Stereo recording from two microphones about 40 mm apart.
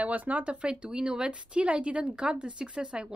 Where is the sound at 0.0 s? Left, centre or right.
Right.